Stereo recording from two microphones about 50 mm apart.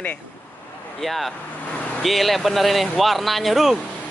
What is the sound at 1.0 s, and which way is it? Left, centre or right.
Speech, centre.